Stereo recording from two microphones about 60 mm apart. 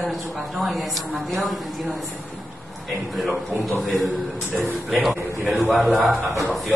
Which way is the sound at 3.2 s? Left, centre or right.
Centre.